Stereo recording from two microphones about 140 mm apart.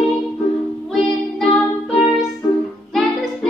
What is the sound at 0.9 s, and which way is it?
Music, centre (ahead or behind).